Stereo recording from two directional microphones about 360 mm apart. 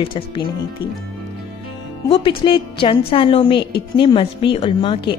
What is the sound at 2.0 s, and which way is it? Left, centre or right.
A woman's voice, centre.